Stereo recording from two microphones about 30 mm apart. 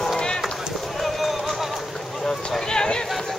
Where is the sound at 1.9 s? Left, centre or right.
Centre.